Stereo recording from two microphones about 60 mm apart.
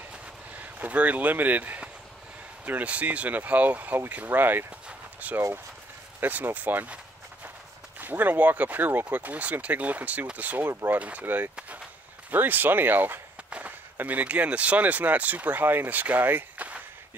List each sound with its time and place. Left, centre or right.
0.6 s speech: right
4.8 s a sound: right
6.2 s speech: right
8.0 s speech: right
10.6 s speech: right
10.9 s speech: right